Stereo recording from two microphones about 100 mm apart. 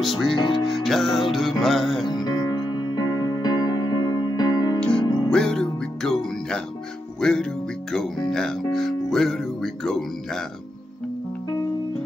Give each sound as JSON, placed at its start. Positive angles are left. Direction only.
{"t": 0.0, "sound": "music", "side_deg": 0}
{"t": 0.4, "sound": "speech", "side_deg": 50}
{"t": 0.7, "sound": "music", "side_deg": 0}
{"t": 2.0, "sound": "music", "side_deg": 45}
{"t": 4.7, "sound": "music", "side_deg": 10}
{"t": 5.0, "sound": "music", "side_deg": 50}
{"t": 5.3, "sound": "music", "side_deg": 5}